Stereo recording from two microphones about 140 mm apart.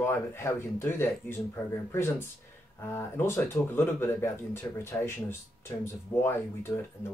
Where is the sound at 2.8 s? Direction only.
15° left (ahead or behind).